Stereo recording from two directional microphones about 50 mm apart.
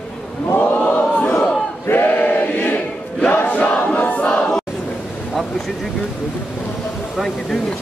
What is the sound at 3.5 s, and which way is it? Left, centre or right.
Battle cry, left.